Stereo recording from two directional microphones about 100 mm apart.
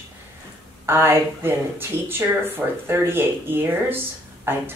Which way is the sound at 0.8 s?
25° right (ahead or behind).